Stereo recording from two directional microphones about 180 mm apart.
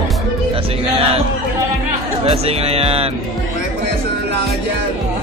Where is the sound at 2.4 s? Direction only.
35° right (ahead or behind).